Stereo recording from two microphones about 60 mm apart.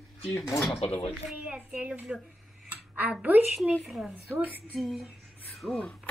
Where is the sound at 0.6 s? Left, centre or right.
Centre.